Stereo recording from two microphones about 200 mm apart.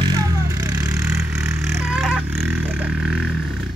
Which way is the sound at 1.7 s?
5° right (ahead or behind).